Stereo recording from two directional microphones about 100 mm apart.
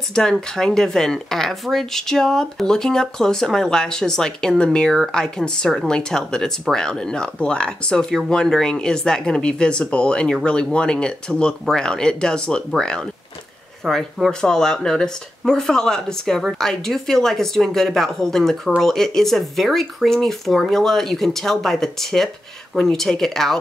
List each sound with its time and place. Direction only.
0.1 s speech: 5° left (ahead or behind)